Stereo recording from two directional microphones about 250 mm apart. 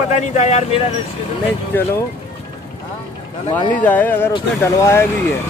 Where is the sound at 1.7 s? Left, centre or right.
Centre.